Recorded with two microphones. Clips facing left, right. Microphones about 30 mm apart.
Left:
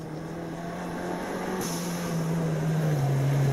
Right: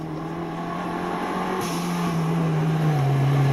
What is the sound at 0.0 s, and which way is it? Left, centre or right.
Vehicle, right.